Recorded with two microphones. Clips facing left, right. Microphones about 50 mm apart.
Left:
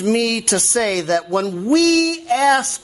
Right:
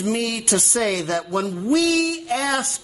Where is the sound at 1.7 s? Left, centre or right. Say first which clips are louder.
Left 4 dB; left.